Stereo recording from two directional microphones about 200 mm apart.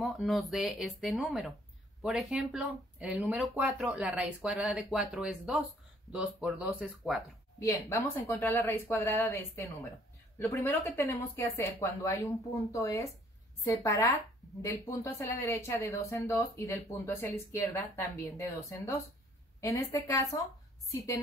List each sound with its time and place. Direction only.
0.0 s speech: centre (ahead or behind)
7.5 s a woman's voice: 15° left (ahead or behind)
19.6 s a woman's voice: 15° left (ahead or behind)